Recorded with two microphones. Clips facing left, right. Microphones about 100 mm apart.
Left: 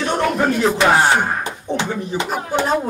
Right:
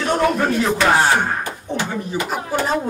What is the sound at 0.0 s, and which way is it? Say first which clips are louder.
Music: even; 5° left (ahead or behind).